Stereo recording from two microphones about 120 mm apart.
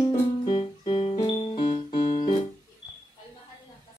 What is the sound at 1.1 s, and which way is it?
Keyboard, 40° left (ahead or behind).